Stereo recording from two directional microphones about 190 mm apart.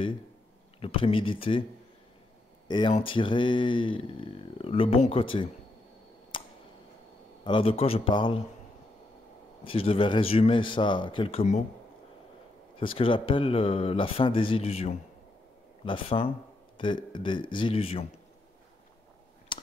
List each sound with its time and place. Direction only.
0.7 s speech: 30° left (ahead or behind)
2.9 s speech: 25° left (ahead or behind)
6.3 s tick: 25° left (ahead or behind)
7.4 s speech: 30° left (ahead or behind)
9.7 s speech: 30° left (ahead or behind)
12.7 s speech: 30° left (ahead or behind)
19.5 s a sound: 25° left (ahead or behind)